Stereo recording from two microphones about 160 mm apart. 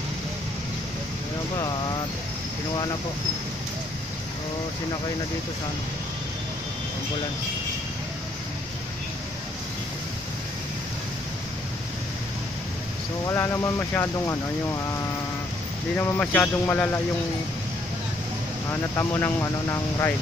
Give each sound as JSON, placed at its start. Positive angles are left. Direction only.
{"t": 13.2, "sound": "speech", "side_deg": 15}
{"t": 16.0, "sound": "speech", "side_deg": 10}
{"t": 18.7, "sound": "speech", "side_deg": 15}